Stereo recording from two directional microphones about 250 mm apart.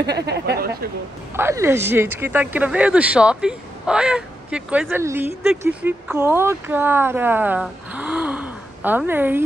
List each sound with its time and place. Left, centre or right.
0.0 s speech: right
1.3 s speech: centre